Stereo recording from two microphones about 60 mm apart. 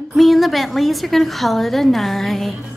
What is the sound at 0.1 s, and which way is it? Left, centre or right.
A woman's voice, centre.